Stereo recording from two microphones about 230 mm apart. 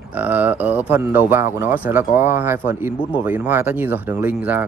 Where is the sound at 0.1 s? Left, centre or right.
Centre.